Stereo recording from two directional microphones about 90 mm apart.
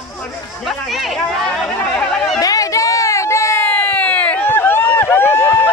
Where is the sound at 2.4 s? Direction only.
40° left (ahead or behind).